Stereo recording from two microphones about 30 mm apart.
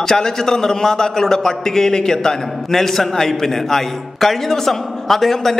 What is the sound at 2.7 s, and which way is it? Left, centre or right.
A man's voice, centre.